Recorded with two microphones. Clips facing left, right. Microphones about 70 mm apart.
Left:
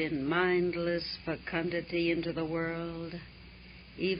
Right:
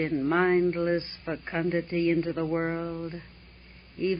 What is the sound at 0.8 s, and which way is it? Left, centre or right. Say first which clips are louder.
Speech: right 5 dB; right.